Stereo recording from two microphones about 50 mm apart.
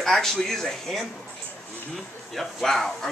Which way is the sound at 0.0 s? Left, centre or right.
Centre.